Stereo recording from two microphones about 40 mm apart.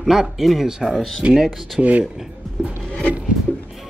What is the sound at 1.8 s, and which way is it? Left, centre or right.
Speech, right.